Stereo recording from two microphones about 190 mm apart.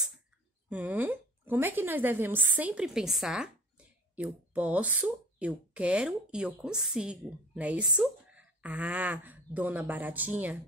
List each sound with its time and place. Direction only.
0.7 s speech: 10° right (ahead or behind)